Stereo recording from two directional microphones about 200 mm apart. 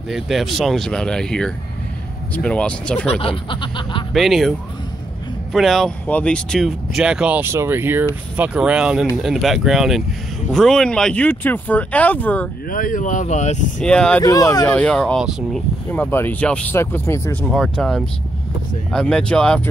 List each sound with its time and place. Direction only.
0.1 s speech: centre (ahead or behind)
3.2 s speech: 25° left (ahead or behind)
4.1 s speech: centre (ahead or behind)
12.7 s speech: 45° left (ahead or behind)
13.8 s speech: 5° left (ahead or behind)
14.2 s speech: 20° left (ahead or behind)
14.7 s speech: 5° left (ahead or behind)
17.5 s speech: centre (ahead or behind)